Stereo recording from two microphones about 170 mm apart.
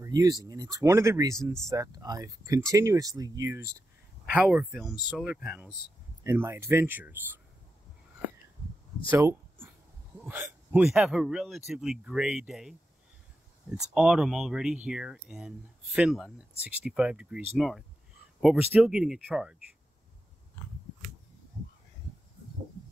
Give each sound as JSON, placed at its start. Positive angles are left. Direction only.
{"t": 0.0, "sound": "speech", "side_deg": -20}
{"t": 4.3, "sound": "speech", "side_deg": -5}
{"t": 9.1, "sound": "speech", "side_deg": -15}
{"t": 13.9, "sound": "speech", "side_deg": -5}